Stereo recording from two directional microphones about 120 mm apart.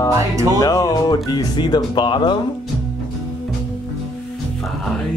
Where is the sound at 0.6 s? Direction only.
35° left (ahead or behind).